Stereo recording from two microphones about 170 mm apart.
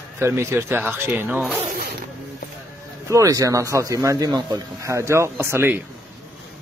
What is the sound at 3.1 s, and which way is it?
A man's voice, 20° right (ahead or behind).